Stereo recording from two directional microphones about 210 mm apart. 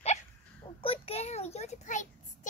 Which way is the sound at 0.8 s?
25° left (ahead or behind).